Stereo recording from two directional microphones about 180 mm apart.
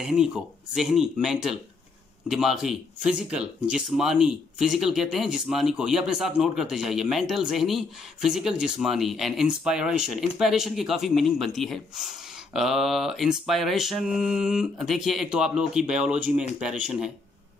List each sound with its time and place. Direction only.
0.0 s speech: 5° right (ahead or behind)